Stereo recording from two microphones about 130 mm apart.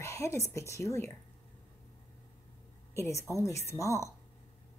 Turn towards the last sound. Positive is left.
turn(degrees=25)  # may be behind; listen again after turning